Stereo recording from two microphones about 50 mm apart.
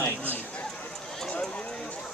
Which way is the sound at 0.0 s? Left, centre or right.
Left.